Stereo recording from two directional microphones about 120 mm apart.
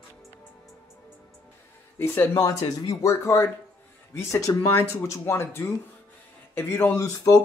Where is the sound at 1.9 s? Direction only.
20° left (ahead or behind).